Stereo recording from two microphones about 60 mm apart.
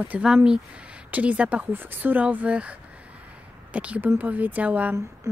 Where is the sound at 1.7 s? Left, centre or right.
Right.